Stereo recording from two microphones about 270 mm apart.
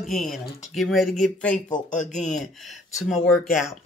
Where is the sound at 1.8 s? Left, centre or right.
Left.